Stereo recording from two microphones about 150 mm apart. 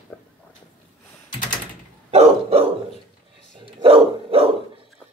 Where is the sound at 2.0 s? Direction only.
45° right (ahead or behind).